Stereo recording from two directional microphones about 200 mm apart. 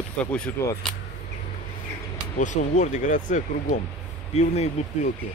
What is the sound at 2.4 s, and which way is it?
Speech, 35° left (ahead or behind).